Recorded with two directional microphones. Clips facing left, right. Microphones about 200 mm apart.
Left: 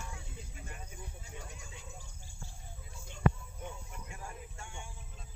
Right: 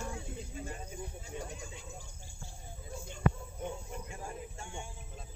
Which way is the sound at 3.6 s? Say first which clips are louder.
Right 6 dB; 30° right (ahead or behind).